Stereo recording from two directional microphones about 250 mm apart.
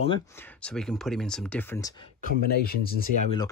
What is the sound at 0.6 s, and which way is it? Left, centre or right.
Speech, centre.